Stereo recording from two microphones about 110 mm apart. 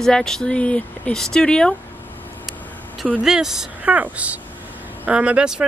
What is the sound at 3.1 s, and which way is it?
Speech, 5° right (ahead or behind).